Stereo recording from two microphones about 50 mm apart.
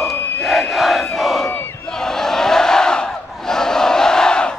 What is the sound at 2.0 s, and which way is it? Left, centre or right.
Battle cry, centre.